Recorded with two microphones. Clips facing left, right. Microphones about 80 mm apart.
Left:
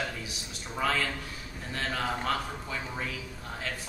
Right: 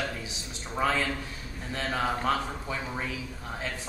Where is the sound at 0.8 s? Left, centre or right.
Right.